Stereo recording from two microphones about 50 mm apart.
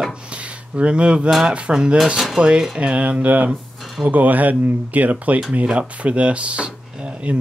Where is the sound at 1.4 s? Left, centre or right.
Centre.